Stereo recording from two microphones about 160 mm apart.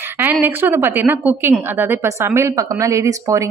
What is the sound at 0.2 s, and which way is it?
A woman's voice, 10° right (ahead or behind).